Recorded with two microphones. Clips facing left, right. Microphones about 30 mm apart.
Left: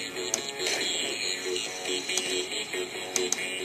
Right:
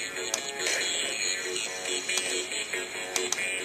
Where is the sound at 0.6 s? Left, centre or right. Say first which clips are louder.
Even; centre.